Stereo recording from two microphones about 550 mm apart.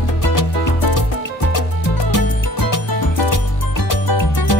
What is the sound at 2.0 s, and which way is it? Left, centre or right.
Music, left.